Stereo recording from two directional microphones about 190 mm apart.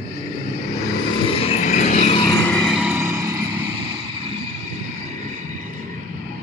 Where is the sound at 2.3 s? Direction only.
10° left (ahead or behind); by 3.4 s 15° right (ahead or behind).